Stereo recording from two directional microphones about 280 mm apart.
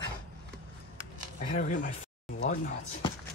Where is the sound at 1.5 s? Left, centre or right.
Left.